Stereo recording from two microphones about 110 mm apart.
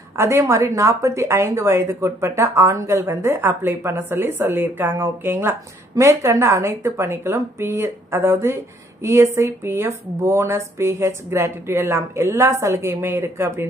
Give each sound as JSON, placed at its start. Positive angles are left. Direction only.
{"t": 0.1, "sound": "a woman's voice", "side_deg": -25}